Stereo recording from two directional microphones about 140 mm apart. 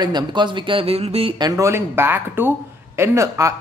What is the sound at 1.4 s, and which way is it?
Speech, 25° right (ahead or behind).